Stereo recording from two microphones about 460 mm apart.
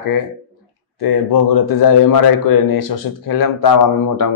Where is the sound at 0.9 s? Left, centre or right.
Left.